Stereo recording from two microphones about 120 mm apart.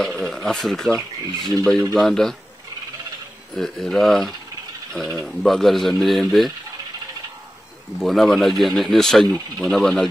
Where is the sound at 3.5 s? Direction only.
5° left (ahead or behind).